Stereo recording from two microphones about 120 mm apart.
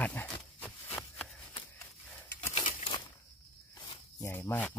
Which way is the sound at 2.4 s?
65° left (ahead or behind).